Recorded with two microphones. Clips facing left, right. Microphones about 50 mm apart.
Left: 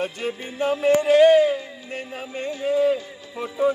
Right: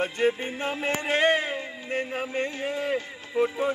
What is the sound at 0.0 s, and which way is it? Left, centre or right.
Speech, right.